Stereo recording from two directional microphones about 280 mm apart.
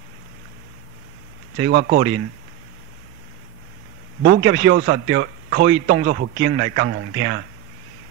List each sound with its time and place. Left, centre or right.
1.6 s a man's voice: right
4.2 s a man's voice: right